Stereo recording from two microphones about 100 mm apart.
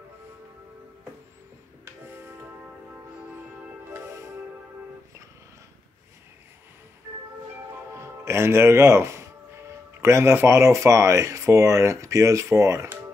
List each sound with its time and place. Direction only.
2.1 s music: 25° right (ahead or behind)
7.9 s speech: 25° right (ahead or behind)